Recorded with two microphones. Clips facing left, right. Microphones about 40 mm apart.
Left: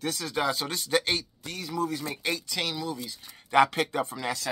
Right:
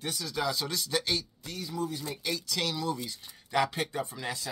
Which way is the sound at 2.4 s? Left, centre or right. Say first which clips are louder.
Left 1 dB; left.